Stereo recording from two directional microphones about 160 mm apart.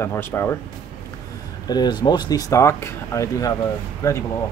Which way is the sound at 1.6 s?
25° left (ahead or behind).